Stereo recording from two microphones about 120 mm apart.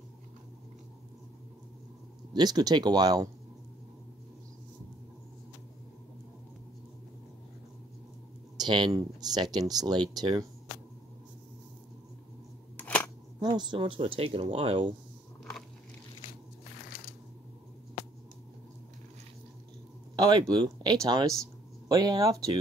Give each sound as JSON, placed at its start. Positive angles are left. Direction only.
{"t": 2.3, "sound": "speech", "side_deg": -35}
{"t": 8.5, "sound": "speech", "side_deg": -40}
{"t": 12.7, "sound": "scissors", "side_deg": 15}
{"t": 13.4, "sound": "speech", "side_deg": -35}
{"t": 20.2, "sound": "speech", "side_deg": -35}